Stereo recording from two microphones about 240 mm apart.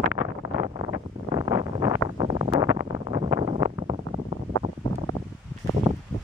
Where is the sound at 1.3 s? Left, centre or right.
Centre.